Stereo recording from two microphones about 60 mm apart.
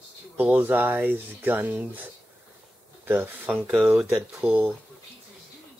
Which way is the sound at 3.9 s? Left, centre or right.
Centre.